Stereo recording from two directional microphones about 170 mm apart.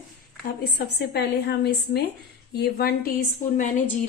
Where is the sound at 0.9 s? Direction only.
70° left (ahead or behind); by 4.1 s 50° left (ahead or behind).